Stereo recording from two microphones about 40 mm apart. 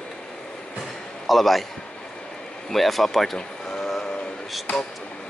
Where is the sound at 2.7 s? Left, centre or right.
Centre.